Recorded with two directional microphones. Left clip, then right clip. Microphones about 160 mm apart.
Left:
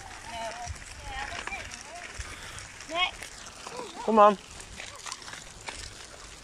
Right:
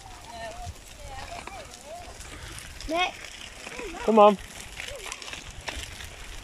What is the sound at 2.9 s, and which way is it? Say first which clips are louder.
Speech: right 2 dB; 35° right (ahead or behind).